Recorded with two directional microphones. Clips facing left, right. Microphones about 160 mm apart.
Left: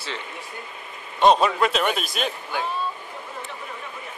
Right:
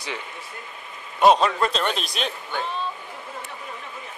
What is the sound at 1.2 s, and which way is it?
A man's voice, 5° left (ahead or behind).